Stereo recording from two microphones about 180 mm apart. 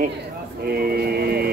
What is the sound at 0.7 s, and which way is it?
Mantra, 55° right (ahead or behind).